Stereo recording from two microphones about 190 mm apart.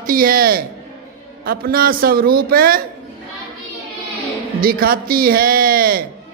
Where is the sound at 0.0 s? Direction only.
50° right (ahead or behind).